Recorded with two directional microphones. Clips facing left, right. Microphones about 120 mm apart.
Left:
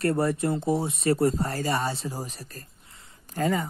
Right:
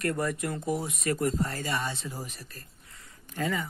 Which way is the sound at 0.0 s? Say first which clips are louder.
Left 5 dB; 30° left (ahead or behind).